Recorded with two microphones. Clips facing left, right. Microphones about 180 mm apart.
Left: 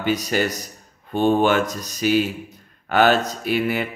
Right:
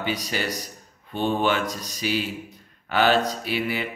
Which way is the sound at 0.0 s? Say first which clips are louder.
Left 6 dB; 50° left (ahead or behind).